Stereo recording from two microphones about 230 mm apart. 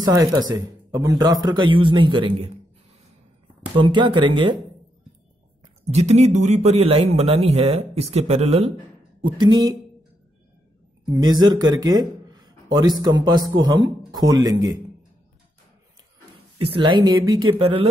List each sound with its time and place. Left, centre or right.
0.0 s a man's voice: centre
3.7 s a man's voice: right
5.9 s a man's voice: right
11.1 s a man's voice: centre
16.5 s a man's voice: right